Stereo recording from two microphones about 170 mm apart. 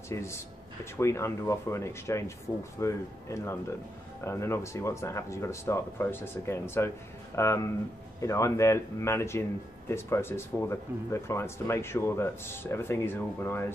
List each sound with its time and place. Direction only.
0.1 s speech: 15° left (ahead or behind)